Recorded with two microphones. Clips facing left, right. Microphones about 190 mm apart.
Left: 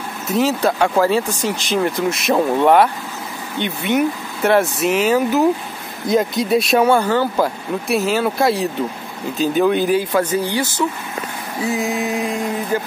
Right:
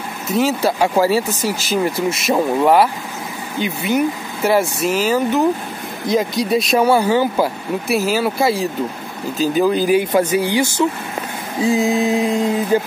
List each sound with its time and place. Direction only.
0.3 s speech: centre (ahead or behind)
9.9 s speech: 15° right (ahead or behind)
12.0 s music: 30° right (ahead or behind)